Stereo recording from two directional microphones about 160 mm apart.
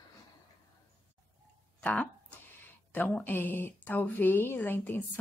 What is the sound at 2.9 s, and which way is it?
Speech, 10° left (ahead or behind).